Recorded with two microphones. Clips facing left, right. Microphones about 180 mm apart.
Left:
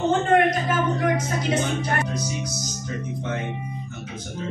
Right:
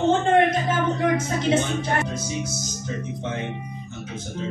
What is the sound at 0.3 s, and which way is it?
Speech, 25° right (ahead or behind).